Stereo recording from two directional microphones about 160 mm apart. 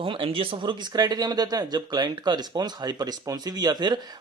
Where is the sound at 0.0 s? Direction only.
35° right (ahead or behind).